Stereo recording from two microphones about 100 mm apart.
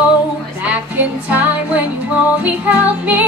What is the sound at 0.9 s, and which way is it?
Music, 15° right (ahead or behind).